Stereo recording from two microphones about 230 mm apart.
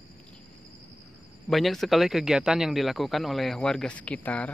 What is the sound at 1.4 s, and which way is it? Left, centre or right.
Speech, centre.